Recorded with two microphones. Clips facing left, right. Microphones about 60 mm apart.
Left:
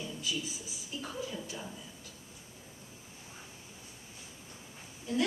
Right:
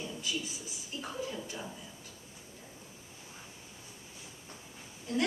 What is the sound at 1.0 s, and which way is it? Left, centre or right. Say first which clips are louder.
Speech: right 1 dB; centre.